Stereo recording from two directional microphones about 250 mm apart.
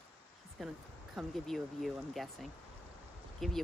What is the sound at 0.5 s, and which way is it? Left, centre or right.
Speech, centre.